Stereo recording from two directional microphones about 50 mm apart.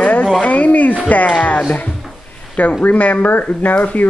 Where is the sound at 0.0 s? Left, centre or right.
Left.